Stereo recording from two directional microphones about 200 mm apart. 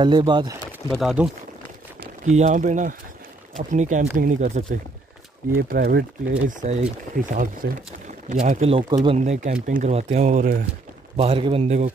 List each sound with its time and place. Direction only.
0.0 s a man's voice: 20° right (ahead or behind)
0.8 s speech: centre (ahead or behind)
2.2 s speech: 35° right (ahead or behind)
5.6 s speech: 50° right (ahead or behind)
6.4 s speech: 35° right (ahead or behind); by 7.8 s 55° right (ahead or behind)
8.3 s speech: 35° right (ahead or behind)
11.1 s a man's voice: 30° right (ahead or behind)